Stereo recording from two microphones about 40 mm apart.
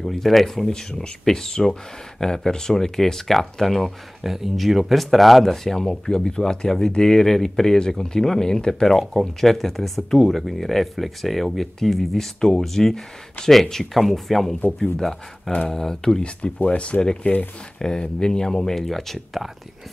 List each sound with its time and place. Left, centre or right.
0.0 s speech: centre
0.7 s speech: centre
4.2 s speech: centre
9.4 s speech: centre
16.6 s speech: left
17.7 s speech: centre